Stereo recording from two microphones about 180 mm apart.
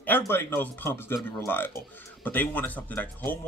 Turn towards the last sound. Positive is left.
turn(degrees=10)  # may be behind; listen again after turning